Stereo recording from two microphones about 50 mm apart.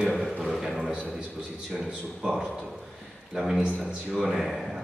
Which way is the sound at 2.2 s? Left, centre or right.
Centre.